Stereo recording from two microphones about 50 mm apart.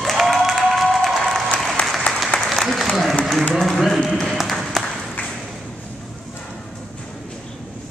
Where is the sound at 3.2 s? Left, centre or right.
Centre.